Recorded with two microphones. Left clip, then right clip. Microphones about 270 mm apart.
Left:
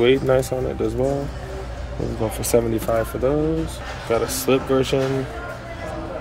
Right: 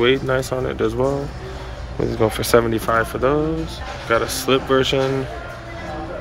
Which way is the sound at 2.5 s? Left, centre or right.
Centre.